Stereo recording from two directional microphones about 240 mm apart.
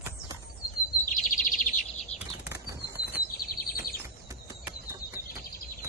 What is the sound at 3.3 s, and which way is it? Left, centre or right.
Bird, left.